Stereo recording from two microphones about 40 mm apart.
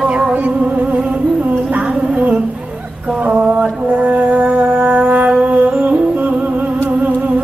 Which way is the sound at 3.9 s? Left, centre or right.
Right.